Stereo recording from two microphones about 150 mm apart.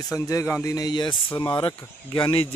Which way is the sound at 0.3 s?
20° left (ahead or behind).